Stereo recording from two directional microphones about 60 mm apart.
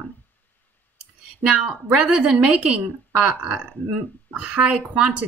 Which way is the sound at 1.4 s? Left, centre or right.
Centre.